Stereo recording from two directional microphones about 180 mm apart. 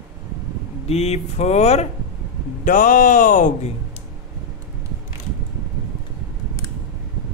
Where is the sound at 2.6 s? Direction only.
50° left (ahead or behind).